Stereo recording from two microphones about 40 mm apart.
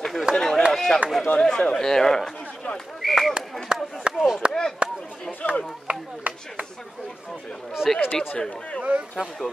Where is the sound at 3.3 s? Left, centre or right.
Right.